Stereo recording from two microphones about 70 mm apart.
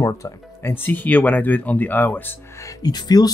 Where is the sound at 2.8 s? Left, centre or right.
Left.